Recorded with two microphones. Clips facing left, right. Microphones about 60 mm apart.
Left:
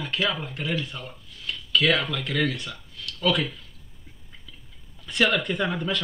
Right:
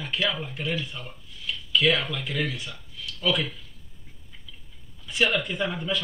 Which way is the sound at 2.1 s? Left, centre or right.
Left.